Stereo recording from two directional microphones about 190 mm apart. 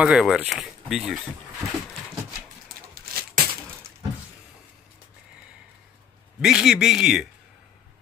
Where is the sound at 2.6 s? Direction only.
50° right (ahead or behind).